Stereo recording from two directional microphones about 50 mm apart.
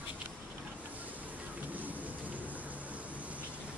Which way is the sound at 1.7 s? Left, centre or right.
Right.